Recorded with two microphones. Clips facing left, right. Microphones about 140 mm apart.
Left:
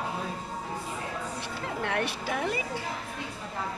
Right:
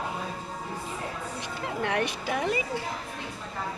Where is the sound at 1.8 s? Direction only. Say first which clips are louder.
Right 2 dB; 5° right (ahead or behind).